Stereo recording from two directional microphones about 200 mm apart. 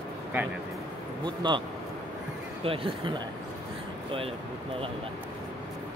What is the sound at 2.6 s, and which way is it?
Speech, 25° right (ahead or behind).